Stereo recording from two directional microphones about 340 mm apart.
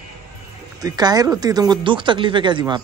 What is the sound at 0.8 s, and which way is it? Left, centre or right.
Speech, centre.